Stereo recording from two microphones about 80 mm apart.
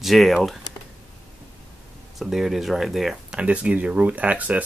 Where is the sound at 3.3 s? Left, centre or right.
Centre.